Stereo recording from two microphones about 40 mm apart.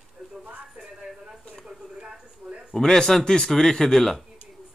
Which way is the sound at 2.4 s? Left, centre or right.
Right.